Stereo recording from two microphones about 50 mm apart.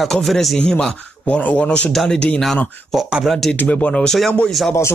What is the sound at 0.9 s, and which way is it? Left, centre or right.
Speech, left.